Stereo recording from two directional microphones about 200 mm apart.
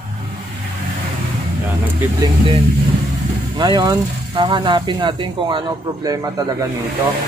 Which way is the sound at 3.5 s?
20° right (ahead or behind).